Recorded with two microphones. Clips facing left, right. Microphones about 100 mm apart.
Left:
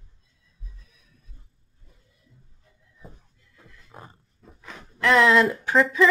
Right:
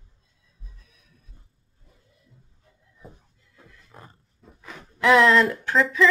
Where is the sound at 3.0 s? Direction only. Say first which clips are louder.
Right 1 dB; 5° right (ahead or behind).